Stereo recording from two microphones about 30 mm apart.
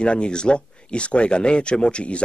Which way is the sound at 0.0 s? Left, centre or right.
Left.